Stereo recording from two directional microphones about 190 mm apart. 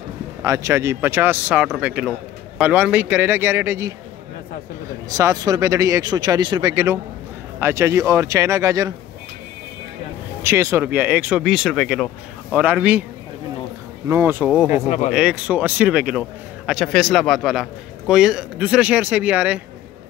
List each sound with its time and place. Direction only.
0.4 s speech: 15° right (ahead or behind)
5.1 s speech: 20° right (ahead or behind)
10.4 s speech: 15° right (ahead or behind)
14.0 s speech: 10° right (ahead or behind)
14.7 s speech: 40° left (ahead or behind)
15.1 s speech: 5° right (ahead or behind)